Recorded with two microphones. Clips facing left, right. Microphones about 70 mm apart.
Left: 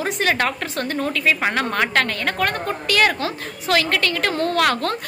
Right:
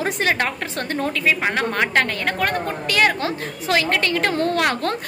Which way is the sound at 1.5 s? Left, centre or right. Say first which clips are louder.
Even; centre.